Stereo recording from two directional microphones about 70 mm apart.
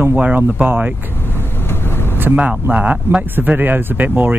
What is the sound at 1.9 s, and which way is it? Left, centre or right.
Vehicle, left.